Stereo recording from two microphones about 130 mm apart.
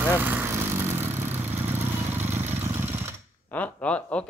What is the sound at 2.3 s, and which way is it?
Motorcycle, 20° right (ahead or behind).